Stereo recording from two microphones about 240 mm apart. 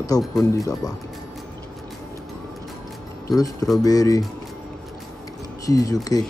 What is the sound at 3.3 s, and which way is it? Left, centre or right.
Speech, centre.